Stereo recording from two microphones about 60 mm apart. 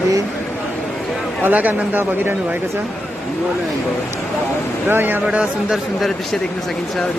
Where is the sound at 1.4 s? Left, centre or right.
Right.